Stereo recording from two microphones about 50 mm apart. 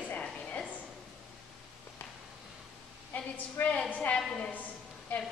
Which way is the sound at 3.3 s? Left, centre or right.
Left.